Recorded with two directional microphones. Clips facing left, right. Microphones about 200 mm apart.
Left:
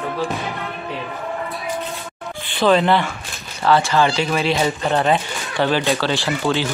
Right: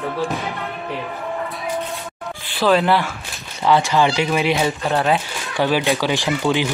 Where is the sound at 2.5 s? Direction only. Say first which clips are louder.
Left 1 dB; 5° right (ahead or behind).